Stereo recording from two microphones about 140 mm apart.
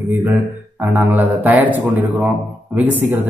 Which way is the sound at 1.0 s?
15° right (ahead or behind).